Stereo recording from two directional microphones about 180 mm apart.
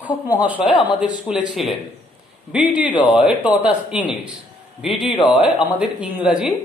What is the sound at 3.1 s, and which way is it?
Speech, 5° right (ahead or behind).